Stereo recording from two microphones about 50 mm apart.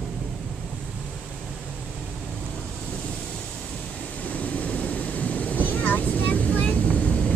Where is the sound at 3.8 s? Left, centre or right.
Left.